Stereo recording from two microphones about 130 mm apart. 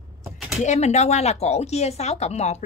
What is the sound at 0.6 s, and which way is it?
Speech, 60° left (ahead or behind).